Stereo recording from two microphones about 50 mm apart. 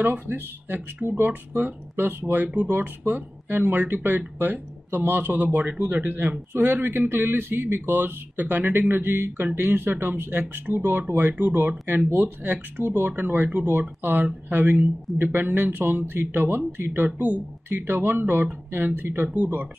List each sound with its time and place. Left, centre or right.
0.0 s speech: right
2.4 s speech: right
2.7 s speech: right